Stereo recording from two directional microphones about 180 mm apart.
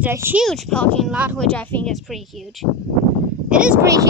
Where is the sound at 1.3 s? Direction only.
5° left (ahead or behind).